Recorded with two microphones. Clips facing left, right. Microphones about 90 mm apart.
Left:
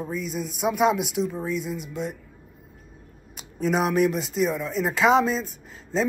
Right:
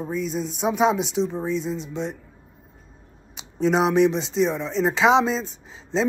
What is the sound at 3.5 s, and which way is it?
Speech, 5° left (ahead or behind).